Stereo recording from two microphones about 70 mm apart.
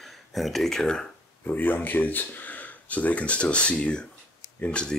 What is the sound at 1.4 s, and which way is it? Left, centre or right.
Speech, left.